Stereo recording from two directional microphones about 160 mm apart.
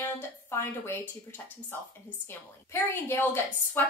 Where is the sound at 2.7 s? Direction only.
15° left (ahead or behind).